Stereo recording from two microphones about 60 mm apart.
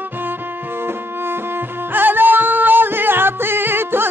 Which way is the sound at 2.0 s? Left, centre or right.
Right.